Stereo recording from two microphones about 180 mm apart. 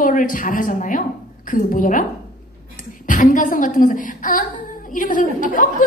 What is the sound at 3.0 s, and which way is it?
A woman's voice, 45° left (ahead or behind).